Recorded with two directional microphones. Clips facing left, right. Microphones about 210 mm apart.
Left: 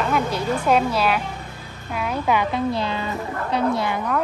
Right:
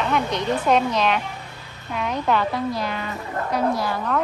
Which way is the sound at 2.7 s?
25° left (ahead or behind).